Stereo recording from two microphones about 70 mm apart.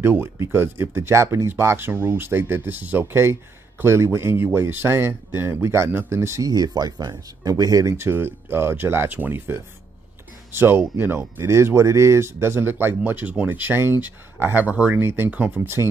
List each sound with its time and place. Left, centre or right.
0.0 s speech: right
6.4 s speech: right
8.0 s speech: right
15.0 s speech: right